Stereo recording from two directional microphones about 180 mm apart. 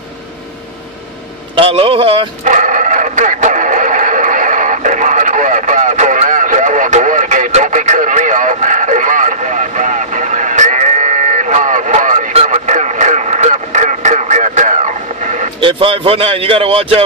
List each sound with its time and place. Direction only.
1.5 s a man's voice: 30° right (ahead or behind)
2.4 s radio: 45° right (ahead or behind)
15.6 s a man's voice: 30° right (ahead or behind)